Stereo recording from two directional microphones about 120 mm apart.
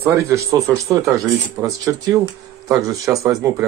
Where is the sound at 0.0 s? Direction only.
25° right (ahead or behind).